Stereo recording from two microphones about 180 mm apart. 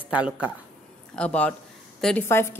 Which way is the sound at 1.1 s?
5° left (ahead or behind).